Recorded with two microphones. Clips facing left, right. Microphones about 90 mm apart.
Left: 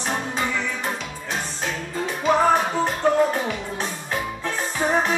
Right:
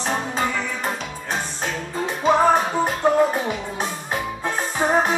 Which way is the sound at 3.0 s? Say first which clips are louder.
Right 1 dB; 20° right (ahead or behind).